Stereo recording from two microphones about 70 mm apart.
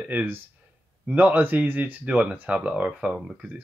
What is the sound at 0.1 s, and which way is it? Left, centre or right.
Speech, right.